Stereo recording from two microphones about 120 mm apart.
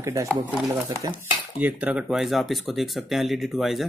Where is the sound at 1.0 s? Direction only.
35° right (ahead or behind).